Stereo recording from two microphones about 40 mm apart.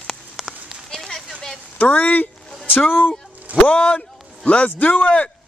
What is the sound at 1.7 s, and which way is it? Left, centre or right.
Speech, left.